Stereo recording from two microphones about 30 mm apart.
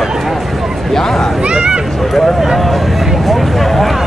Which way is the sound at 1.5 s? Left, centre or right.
Right.